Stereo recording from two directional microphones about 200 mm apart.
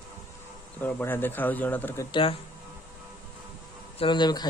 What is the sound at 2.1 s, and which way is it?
Speech, 25° left (ahead or behind).